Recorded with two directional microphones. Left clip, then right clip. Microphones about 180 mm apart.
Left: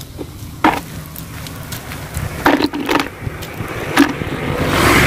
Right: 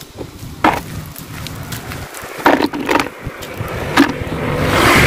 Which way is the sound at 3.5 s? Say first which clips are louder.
Right 1 dB; 30° left (ahead or behind).